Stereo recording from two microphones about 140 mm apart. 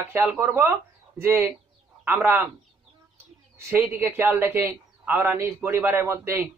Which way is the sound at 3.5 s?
20° right (ahead or behind).